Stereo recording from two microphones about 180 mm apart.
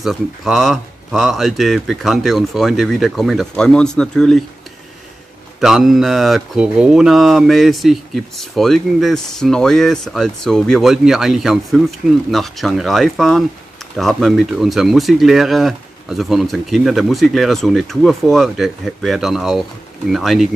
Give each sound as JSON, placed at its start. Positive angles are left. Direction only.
{"t": 0.0, "sound": "speech", "side_deg": 0}
{"t": 5.6, "sound": "speech", "side_deg": 0}